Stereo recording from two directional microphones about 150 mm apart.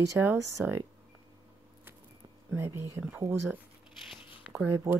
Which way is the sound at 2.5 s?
15° right (ahead or behind).